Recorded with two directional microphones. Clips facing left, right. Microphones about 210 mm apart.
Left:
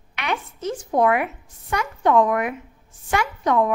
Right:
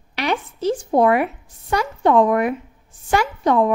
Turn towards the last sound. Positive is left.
turn(degrees=-30)  # may be behind; listen again after turning